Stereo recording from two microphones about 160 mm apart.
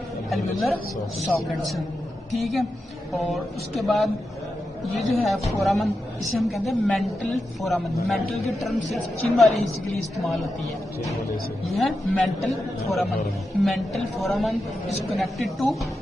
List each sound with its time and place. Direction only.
1.2 s a man's voice: centre (ahead or behind)
11.8 s a man's voice: centre (ahead or behind)
13.6 s a man's voice: centre (ahead or behind)
14.9 s speech: 40° left (ahead or behind)
15.1 s a man's voice: centre (ahead or behind)